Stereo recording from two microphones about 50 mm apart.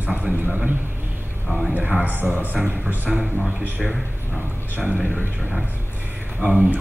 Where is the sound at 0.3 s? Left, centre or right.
Centre.